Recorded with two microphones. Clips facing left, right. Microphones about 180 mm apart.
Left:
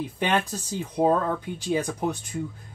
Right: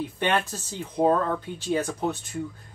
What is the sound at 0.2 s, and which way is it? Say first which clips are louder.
Speech: left 1 dB; 15° left (ahead or behind).